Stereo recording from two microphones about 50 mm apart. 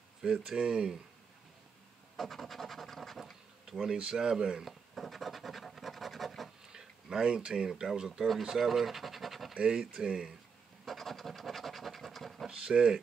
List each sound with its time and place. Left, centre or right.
0.6 s speech: centre
2.1 s speech: centre
3.9 s speech: centre
4.6 s scratch: centre
6.7 s speech: centre
8.3 s scratch: centre
9.5 s speech: centre
10.9 s scratch: centre
12.4 s speech: centre